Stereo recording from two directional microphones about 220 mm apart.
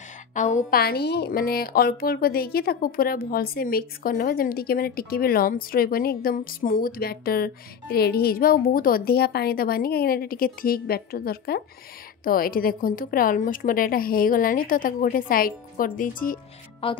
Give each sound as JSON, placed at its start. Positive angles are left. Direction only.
{"t": 0.3, "sound": "a woman's voice", "side_deg": 35}
{"t": 0.7, "sound": "a woman's voice", "side_deg": 45}
{"t": 16.8, "sound": "speech", "side_deg": 25}